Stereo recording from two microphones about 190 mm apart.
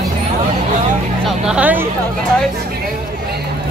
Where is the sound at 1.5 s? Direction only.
5° right (ahead or behind).